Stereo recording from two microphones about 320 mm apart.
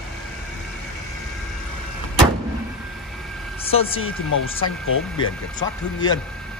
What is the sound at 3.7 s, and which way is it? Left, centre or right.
Speech, centre.